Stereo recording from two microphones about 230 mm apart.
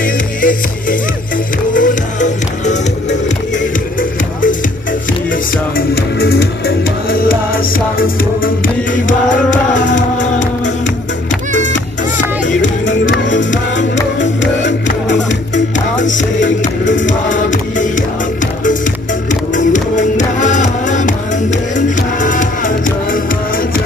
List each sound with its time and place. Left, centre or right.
0.0 s music: left
5.8 s music: left
8.6 s music: left
12.2 s music: left
13.2 s music: left
16.0 s music: left
16.4 s music: left
17.0 s music: left
19.5 s music: left